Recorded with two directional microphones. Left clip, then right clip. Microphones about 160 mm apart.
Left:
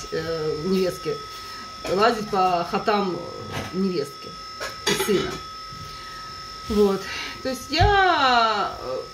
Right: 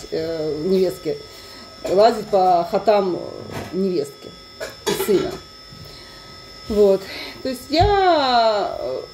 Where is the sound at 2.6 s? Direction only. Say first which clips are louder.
Right 6 dB; centre (ahead or behind).